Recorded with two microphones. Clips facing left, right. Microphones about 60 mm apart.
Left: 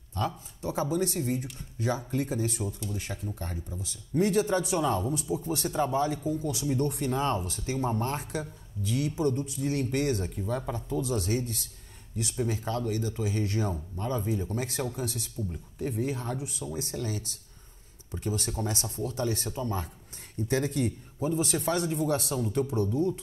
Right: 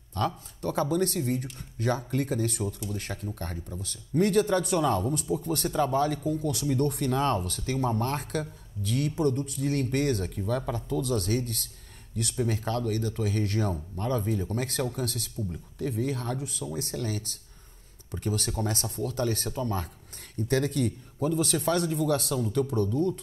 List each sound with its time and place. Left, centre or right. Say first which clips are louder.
0.2 s a man's voice: right 2 dB; right